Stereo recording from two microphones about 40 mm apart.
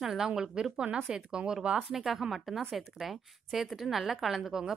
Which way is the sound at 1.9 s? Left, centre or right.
Centre.